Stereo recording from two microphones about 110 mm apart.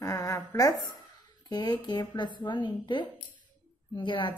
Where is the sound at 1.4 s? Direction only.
40° left (ahead or behind).